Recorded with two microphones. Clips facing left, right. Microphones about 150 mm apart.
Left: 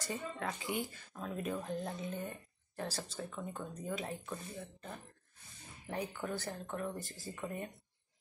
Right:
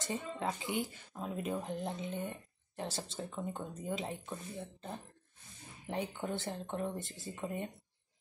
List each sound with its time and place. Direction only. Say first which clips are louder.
0.0 s speech: right 2 dB; 20° right (ahead or behind)
5.9 s speech: right 2 dB; 25° right (ahead or behind)